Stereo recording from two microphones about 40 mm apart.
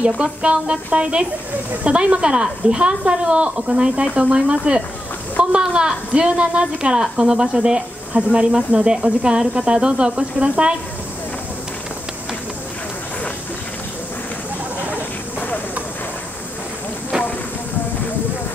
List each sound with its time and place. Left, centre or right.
0.0 s a woman's voice: right